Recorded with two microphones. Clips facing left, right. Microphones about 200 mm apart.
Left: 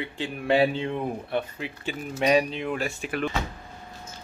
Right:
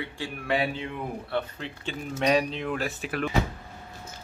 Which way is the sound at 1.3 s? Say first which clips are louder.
Left 2 dB; 10° left (ahead or behind).